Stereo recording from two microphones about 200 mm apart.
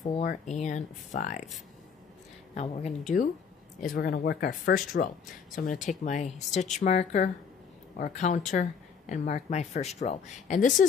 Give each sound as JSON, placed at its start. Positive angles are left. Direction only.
{"t": 0.2, "sound": "speech", "side_deg": 40}
{"t": 2.5, "sound": "speech", "side_deg": 35}
{"t": 3.9, "sound": "speech", "side_deg": 50}